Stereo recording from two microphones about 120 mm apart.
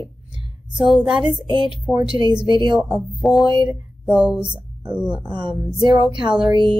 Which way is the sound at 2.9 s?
Centre (ahead or behind).